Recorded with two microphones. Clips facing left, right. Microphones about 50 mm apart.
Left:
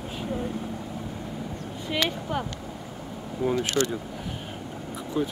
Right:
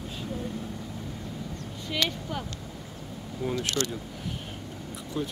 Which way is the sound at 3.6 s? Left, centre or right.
Left.